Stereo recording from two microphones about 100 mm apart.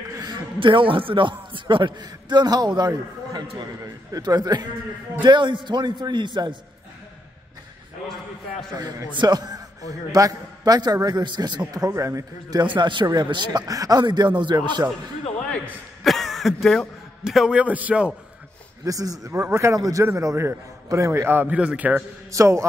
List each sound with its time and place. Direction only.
0.2 s a man's voice: 50° right (ahead or behind)
9.1 s a man's voice: 45° right (ahead or behind)
11.7 s a man's voice: 35° right (ahead or behind)
12.6 s a man's voice: 55° right (ahead or behind)
16.0 s a sound: centre (ahead or behind)
17.2 s a man's voice: 5° right (ahead or behind)
18.9 s a man's voice: 35° right (ahead or behind); by 22.0 s 15° right (ahead or behind)
22.3 s a man's voice: 30° right (ahead or behind)